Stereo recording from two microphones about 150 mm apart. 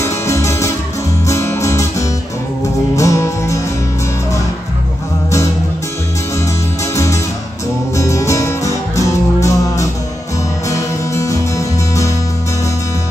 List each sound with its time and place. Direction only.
0.0 s music: 20° left (ahead or behind)
7.9 s music: 20° left (ahead or behind)